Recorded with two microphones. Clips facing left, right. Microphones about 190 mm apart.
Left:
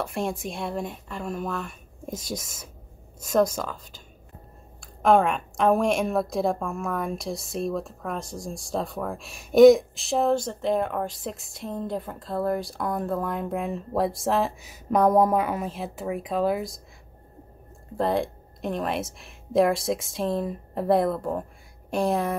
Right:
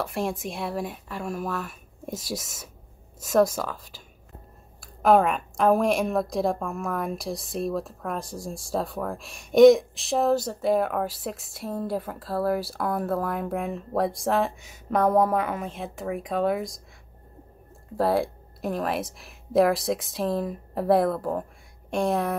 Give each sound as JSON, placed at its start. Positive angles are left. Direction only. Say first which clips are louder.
{"t": 0.0, "sound": "speech", "louder": "even", "side_deg": 0}
{"t": 14.9, "sound": "speech", "louder": "left 2 dB", "side_deg": 10}
{"t": 17.9, "sound": "speech", "louder": "right 1 dB", "side_deg": -5}